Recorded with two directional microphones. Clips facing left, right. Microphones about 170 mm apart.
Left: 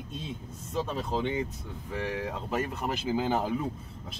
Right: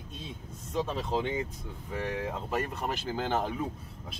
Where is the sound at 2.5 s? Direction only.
5° left (ahead or behind).